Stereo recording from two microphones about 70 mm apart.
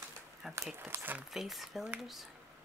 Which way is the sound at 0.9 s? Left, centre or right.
Right.